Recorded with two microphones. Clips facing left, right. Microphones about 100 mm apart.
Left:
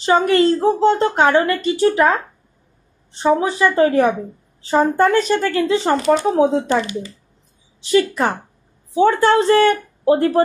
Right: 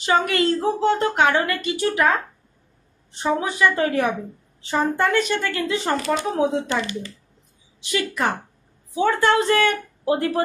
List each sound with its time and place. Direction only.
0.0 s a woman's voice: 35° left (ahead or behind)
3.2 s a woman's voice: 35° left (ahead or behind)
7.8 s a woman's voice: 35° left (ahead or behind)